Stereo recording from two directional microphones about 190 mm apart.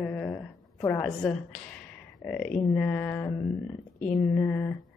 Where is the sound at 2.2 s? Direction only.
5° left (ahead or behind).